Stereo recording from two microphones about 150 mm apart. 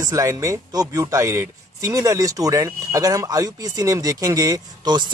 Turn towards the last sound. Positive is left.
turn(degrees=-30)  # may be behind; listen again after turning